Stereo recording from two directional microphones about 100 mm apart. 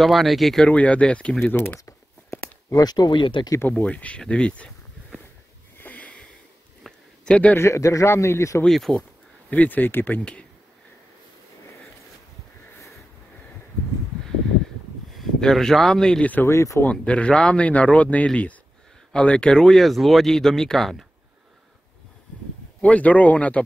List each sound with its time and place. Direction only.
0.0 s speech: centre (ahead or behind)
0.7 s a man's voice: 15° left (ahead or behind)
1.9 s a sound: 30° left (ahead or behind); by 3.4 s 50° left (ahead or behind)
3.7 s speech: 10° left (ahead or behind)
5.8 s sniff: 15° left (ahead or behind)
6.8 s a sound: 10° left (ahead or behind)
7.5 s a man's voice: 30° left (ahead or behind)
8.6 s speech: 5° left (ahead or behind)
9.5 s speech: 15° left (ahead or behind)
15.1 s speech: centre (ahead or behind)
16.4 s a man's voice: 30° left (ahead or behind)
16.8 s speech: 10° left (ahead or behind)
22.8 s speech: 15° left (ahead or behind)